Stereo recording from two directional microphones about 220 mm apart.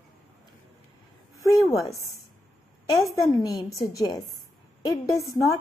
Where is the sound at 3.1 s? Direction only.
15° left (ahead or behind).